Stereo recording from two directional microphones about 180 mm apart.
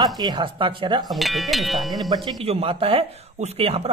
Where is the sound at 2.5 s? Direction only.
30° right (ahead or behind).